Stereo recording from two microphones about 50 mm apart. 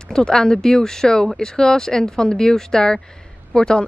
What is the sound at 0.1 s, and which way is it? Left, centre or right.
A woman's voice, centre.